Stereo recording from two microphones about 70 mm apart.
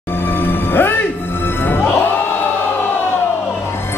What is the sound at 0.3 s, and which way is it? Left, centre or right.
Music, left.